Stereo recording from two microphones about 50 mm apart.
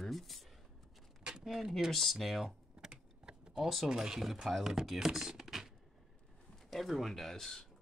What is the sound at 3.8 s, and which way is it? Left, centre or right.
Speech, centre.